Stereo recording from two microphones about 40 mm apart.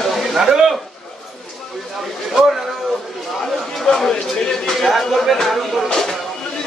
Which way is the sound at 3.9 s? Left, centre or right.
Centre.